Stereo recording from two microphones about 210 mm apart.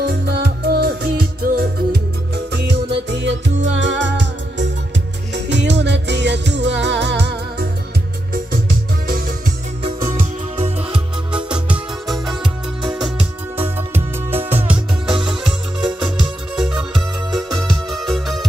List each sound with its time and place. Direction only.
0.0 s music: 50° right (ahead or behind)
9.8 s music: 15° right (ahead or behind)
10.9 s music: 5° right (ahead or behind)
16.5 s music: 5° right (ahead or behind)